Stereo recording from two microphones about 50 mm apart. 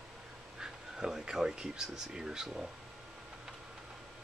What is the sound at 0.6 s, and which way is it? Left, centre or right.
Speech, centre.